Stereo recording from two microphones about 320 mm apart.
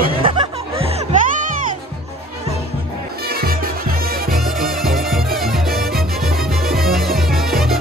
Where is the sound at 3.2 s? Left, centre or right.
Right.